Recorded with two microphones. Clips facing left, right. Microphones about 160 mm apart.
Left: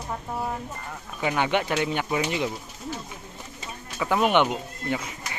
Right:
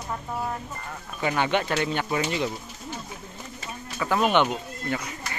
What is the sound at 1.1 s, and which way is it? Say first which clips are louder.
Speech: even; 5° left (ahead or behind).